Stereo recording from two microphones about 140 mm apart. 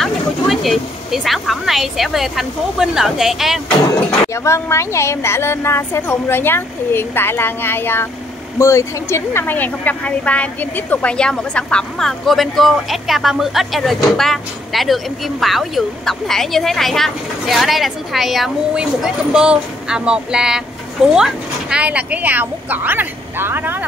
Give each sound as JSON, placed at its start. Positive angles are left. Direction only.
{"t": 0.0, "sound": "speech", "side_deg": 0}
{"t": 4.3, "sound": "a woman's voice", "side_deg": 20}